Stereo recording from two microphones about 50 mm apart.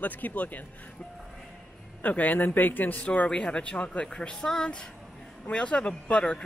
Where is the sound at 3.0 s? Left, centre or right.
Left.